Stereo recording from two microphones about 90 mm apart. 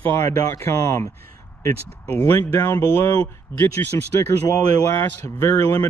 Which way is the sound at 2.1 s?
25° left (ahead or behind).